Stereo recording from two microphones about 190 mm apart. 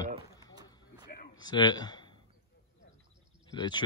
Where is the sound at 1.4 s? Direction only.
25° left (ahead or behind).